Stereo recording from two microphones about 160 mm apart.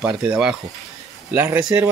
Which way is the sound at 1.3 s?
10° right (ahead or behind).